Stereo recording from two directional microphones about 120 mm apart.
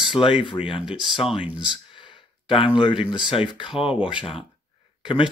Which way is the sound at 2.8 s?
45° left (ahead or behind).